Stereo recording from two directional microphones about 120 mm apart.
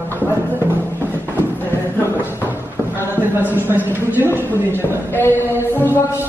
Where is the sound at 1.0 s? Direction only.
15° left (ahead or behind).